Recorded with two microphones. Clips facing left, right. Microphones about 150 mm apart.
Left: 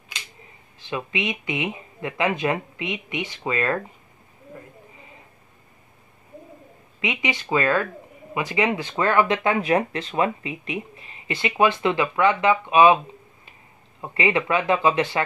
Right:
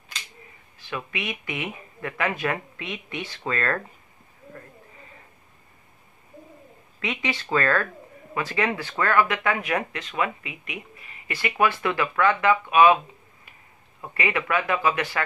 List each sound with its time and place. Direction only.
0.7 s speech: 25° left (ahead or behind)
4.6 s a sound: 15° left (ahead or behind)
7.0 s speech: 15° left (ahead or behind)
14.0 s speech: 25° left (ahead or behind)